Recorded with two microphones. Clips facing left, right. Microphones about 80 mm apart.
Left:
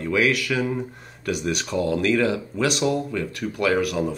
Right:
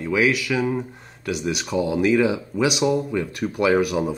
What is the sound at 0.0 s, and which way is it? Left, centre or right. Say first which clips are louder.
Speech: right 1 dB; centre.